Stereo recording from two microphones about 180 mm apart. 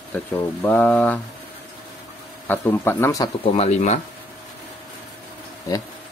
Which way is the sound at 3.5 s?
35° left (ahead or behind).